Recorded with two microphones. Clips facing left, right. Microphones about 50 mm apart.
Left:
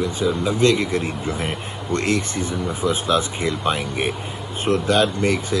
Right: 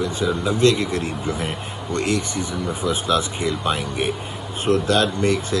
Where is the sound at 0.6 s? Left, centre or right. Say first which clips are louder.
Even; left.